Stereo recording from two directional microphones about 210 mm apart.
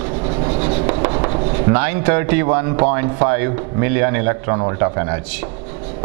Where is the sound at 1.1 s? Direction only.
25° right (ahead or behind).